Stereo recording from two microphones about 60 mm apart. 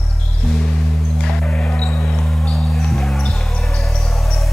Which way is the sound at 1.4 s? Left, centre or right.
Centre.